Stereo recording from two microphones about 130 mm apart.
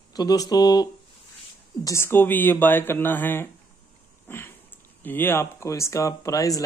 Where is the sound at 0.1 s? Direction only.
30° left (ahead or behind).